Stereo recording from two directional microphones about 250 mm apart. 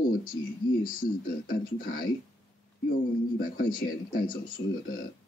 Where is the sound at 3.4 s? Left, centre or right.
Left.